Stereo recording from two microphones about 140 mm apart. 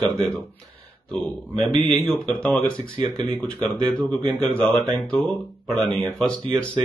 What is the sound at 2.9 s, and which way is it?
Speech, 35° right (ahead or behind).